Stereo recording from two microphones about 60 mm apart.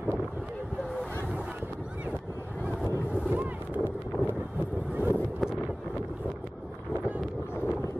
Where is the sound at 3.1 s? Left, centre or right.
Right.